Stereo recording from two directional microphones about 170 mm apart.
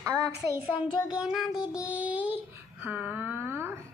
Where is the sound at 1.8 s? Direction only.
10° right (ahead or behind).